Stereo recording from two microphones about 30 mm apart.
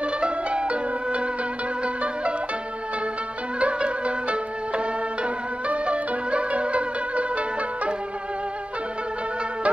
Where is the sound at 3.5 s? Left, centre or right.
Right.